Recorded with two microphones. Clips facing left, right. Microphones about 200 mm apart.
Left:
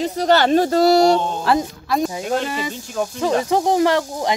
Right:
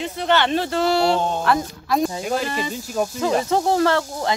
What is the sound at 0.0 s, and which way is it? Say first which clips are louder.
Speech: left 4 dB; 40° left (ahead or behind).